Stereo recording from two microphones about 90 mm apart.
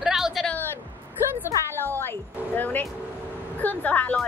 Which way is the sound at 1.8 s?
25° left (ahead or behind).